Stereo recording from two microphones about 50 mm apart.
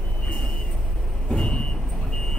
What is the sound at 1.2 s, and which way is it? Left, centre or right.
Vehicle, left.